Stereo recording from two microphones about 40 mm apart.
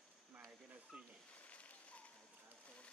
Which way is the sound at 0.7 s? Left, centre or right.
Right.